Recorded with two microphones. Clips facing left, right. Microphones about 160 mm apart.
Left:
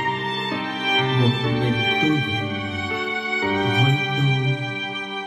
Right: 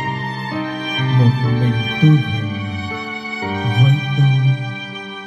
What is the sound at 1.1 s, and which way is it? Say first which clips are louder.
Music: right 6 dB; 40° right (ahead or behind).